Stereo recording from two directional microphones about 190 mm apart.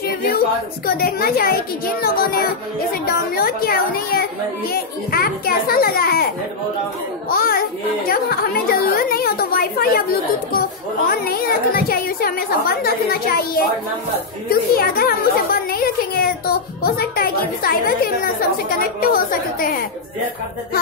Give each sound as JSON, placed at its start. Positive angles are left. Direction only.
{"t": 0.8, "sound": "speech", "side_deg": 50}
{"t": 7.2, "sound": "speech", "side_deg": 50}
{"t": 11.1, "sound": "speech", "side_deg": 50}